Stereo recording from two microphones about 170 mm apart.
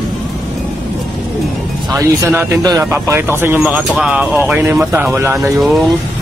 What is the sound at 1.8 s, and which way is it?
Speech, 20° right (ahead or behind).